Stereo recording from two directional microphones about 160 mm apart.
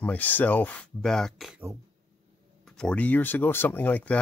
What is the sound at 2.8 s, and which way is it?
Speech, 10° left (ahead or behind).